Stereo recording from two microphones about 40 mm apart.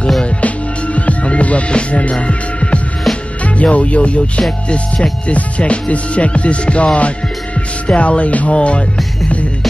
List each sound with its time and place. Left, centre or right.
0.4 s music: left
4.5 s speech: left
5.3 s music: left
8.5 s speech: left